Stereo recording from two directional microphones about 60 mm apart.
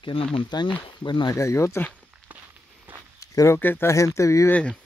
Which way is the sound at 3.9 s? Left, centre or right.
Left.